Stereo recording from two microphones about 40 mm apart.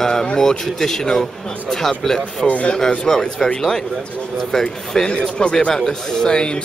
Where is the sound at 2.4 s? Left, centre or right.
Left.